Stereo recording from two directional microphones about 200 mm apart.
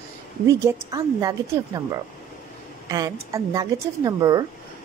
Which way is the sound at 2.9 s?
15° right (ahead or behind).